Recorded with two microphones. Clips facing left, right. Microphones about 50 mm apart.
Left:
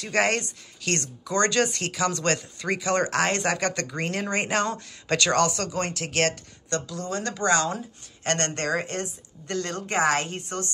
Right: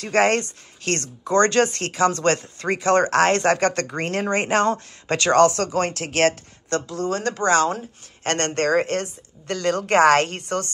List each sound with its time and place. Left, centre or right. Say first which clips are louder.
0.0 s speech: right 5 dB; right